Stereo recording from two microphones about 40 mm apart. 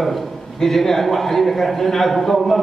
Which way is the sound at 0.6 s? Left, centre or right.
Centre.